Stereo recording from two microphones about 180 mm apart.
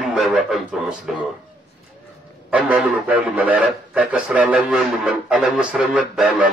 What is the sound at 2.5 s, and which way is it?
A man's voice, 5° right (ahead or behind).